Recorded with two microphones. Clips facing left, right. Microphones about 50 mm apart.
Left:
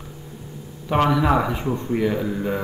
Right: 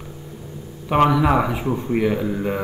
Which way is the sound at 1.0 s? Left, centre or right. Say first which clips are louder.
Right 1 dB; centre.